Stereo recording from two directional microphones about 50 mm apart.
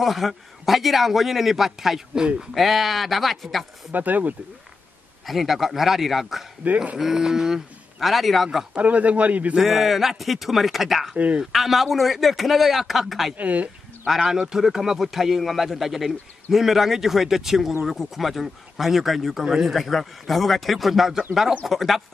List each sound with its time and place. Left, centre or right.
0.0 s speech: centre
2.5 s speech: centre
3.9 s speech: right
5.2 s speech: centre
6.6 s speech: right
7.0 s a man's voice: centre
8.7 s speech: right
9.6 s speech: centre
11.1 s speech: right
11.5 s speech: centre
13.4 s speech: right
14.0 s a man's voice: centre
19.7 s speech: centre